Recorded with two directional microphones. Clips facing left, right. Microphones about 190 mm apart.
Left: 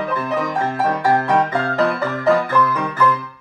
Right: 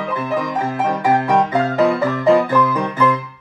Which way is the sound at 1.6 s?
15° right (ahead or behind).